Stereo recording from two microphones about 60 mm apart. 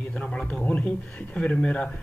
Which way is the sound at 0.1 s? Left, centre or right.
Left.